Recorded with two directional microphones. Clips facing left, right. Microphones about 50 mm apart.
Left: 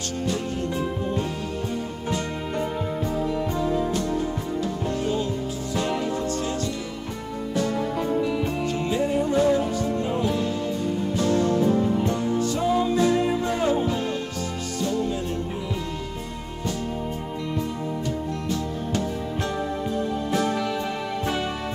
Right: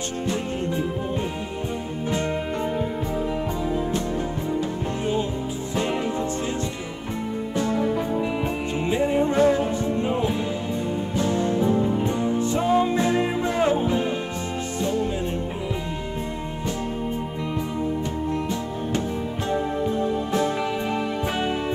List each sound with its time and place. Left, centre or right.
5.0 s music: right
8.2 s music: right
11.3 s music: right
18.5 s music: right